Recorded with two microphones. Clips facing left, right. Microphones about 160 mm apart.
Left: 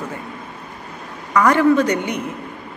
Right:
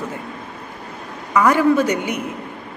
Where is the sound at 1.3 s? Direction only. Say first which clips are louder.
Left 1 dB; 10° right (ahead or behind).